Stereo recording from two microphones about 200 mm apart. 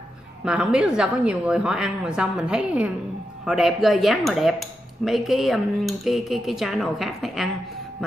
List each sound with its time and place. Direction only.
0.5 s speech: 5° right (ahead or behind)